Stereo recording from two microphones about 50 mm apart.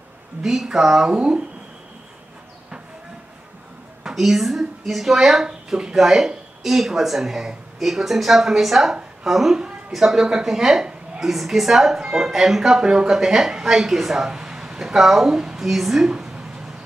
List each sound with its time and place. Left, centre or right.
0.4 s a woman's voice: centre
4.0 s a woman's voice: centre
16.1 s a sound: centre